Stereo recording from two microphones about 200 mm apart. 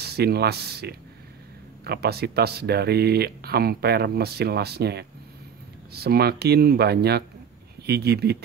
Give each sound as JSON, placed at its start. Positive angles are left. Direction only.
{"t": 0.0, "sound": "speech", "side_deg": -55}